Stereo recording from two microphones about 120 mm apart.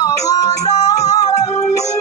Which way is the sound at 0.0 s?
30° left (ahead or behind).